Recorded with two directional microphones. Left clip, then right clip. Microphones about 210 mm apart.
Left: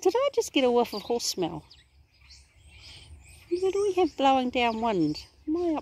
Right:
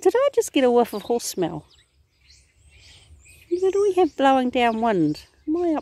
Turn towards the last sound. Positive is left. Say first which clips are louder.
# right 5 dB
turn(degrees=-40)  # may be behind; listen again after turning